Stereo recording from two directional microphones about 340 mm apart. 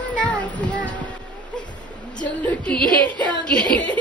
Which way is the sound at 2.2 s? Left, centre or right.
Centre.